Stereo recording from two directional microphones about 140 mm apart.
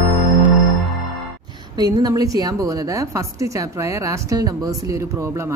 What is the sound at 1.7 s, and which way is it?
A woman's voice, 30° right (ahead or behind).